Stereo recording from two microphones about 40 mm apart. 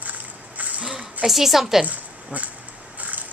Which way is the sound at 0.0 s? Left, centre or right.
Right.